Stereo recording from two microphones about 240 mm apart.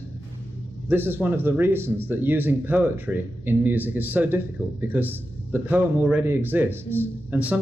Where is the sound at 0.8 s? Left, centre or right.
Centre.